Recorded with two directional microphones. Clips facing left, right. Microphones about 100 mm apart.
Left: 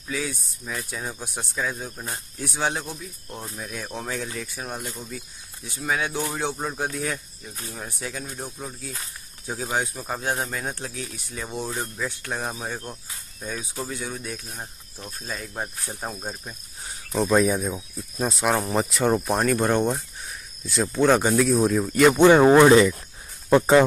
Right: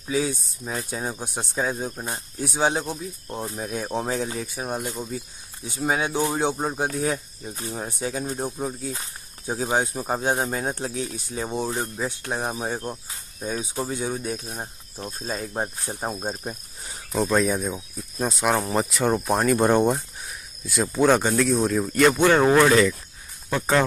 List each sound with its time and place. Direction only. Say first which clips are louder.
0.0 s speech: right 5 dB; 25° right (ahead or behind)
17.1 s speech: left 1 dB; centre (ahead or behind)
19.5 s speech: right 5 dB; 15° right (ahead or behind)
20.2 s speech: even; centre (ahead or behind)
22.1 s speech: left 6 dB; 15° left (ahead or behind)